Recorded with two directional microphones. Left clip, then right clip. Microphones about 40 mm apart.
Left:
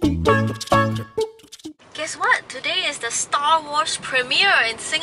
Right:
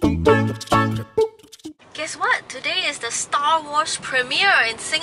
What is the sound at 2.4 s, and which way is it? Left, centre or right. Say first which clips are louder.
A woman's voice: even; centre.